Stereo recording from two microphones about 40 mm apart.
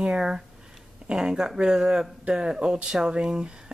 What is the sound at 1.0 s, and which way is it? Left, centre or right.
Speech, centre.